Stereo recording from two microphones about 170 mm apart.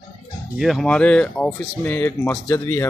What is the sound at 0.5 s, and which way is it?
Speech, centre (ahead or behind).